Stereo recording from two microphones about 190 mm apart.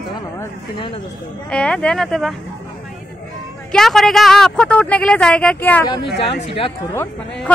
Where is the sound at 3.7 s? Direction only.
Centre (ahead or behind).